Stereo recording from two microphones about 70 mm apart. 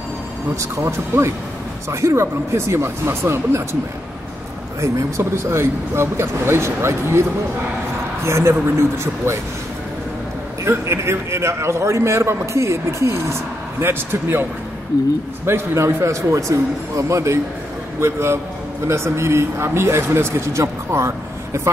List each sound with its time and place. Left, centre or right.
0.6 s a man's voice: right
4.8 s a man's voice: right
10.6 s a man's voice: right
15.4 s a man's voice: right